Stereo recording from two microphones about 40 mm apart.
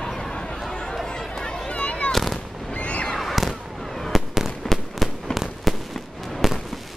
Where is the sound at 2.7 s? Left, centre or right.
Left.